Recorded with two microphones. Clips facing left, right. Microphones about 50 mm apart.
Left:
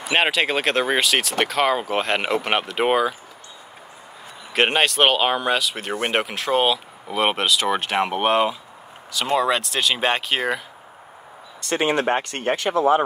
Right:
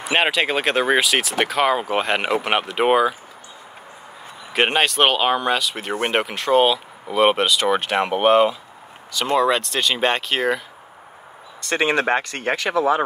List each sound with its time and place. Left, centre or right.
0.1 s speech: centre
4.5 s speech: centre
11.7 s speech: right